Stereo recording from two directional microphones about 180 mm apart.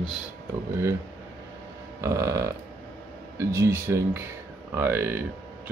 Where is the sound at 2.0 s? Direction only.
15° right (ahead or behind).